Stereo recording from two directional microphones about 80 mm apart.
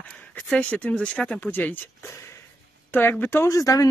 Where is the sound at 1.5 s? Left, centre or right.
Left.